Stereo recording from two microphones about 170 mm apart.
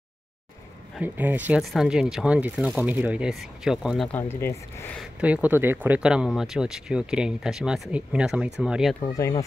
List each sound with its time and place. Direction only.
1.0 s speech: 10° right (ahead or behind)
4.1 s speech: 15° left (ahead or behind)
5.2 s speech: 10° right (ahead or behind)
9.0 s speech: 25° left (ahead or behind)